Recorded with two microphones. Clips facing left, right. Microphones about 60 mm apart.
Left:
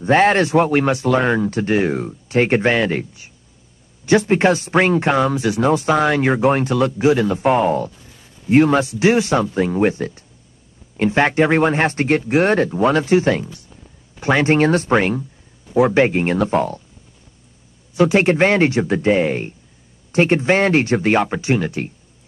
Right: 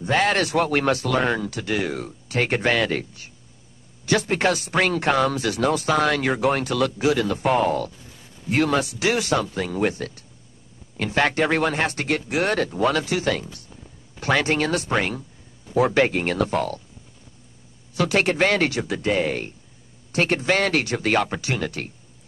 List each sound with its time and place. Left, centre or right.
0.0 s speech: left
1.5 s speech: left
17.9 s speech: left